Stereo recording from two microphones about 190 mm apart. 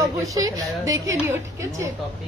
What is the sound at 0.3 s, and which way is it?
A woman's voice, 20° right (ahead or behind).